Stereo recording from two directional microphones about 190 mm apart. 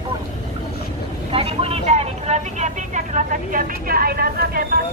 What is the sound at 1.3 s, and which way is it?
Speech, 30° right (ahead or behind).